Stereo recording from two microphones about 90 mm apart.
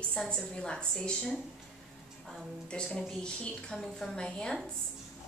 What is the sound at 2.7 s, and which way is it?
A woman's voice, 5° left (ahead or behind).